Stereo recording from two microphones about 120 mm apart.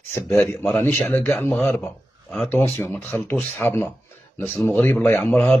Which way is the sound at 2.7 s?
15° left (ahead or behind).